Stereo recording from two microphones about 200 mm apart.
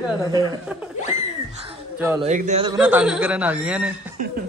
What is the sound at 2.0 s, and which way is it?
Speech, 5° right (ahead or behind).